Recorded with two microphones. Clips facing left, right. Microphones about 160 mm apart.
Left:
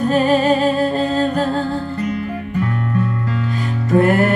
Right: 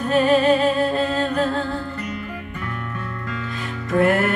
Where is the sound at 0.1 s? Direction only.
40° left (ahead or behind).